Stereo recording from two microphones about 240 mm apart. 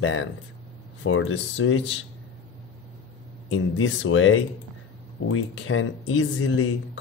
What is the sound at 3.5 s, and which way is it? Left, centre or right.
Speech, left.